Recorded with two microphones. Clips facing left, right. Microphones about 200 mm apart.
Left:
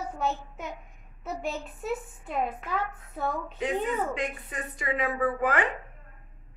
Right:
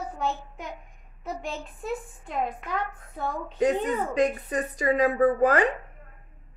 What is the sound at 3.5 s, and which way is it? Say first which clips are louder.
A woman's voice: right 6 dB; 40° right (ahead or behind).